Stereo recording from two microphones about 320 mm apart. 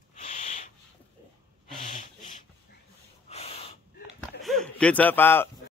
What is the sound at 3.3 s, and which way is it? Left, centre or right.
Owl, centre.